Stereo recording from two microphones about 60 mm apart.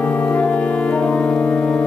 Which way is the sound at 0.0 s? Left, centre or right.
Left.